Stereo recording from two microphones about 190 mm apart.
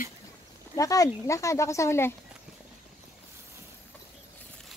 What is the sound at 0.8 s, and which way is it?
Speech, 15° left (ahead or behind).